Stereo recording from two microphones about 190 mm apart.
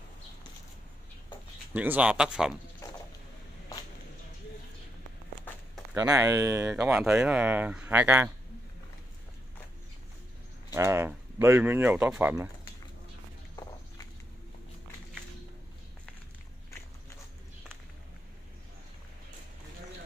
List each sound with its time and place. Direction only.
1.7 s speech: 10° right (ahead or behind)
2.8 s mechanisms: 15° left (ahead or behind)
5.9 s speech: 15° right (ahead or behind)
10.7 s speech: 15° right (ahead or behind)